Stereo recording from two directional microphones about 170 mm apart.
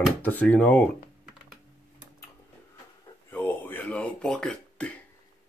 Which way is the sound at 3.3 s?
10° left (ahead or behind).